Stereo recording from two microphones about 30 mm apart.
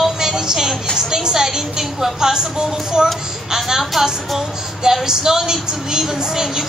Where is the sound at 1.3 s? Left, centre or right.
Centre.